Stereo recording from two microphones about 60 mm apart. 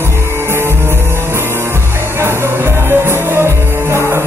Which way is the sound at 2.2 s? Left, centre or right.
Right.